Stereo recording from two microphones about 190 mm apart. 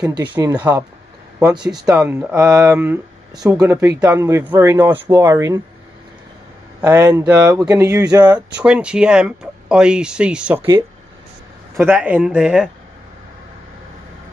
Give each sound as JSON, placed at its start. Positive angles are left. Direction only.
{"t": 0.6, "sound": "speech", "side_deg": -20}
{"t": 2.0, "sound": "speech", "side_deg": -10}
{"t": 6.8, "sound": "speech", "side_deg": -15}
{"t": 8.5, "sound": "speech", "side_deg": -5}
{"t": 10.6, "sound": "speech", "side_deg": -20}
{"t": 11.8, "sound": "speech", "side_deg": -10}